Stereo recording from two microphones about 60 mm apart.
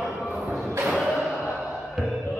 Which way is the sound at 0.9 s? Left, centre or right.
Centre.